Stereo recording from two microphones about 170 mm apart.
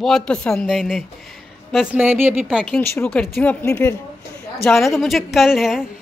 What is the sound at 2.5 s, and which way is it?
Speech, 5° left (ahead or behind).